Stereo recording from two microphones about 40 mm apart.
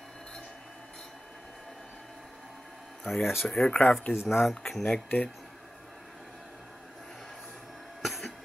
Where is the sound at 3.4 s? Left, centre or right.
Centre.